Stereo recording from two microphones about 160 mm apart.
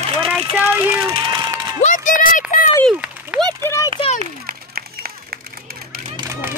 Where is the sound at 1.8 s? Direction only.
50° left (ahead or behind).